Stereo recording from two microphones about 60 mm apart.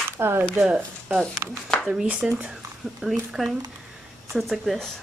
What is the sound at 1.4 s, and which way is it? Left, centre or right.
Speech, right.